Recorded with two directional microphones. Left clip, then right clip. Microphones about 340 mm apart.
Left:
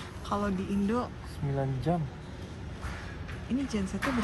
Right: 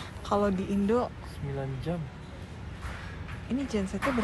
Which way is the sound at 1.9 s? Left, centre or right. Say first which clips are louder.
Left 5 dB; left.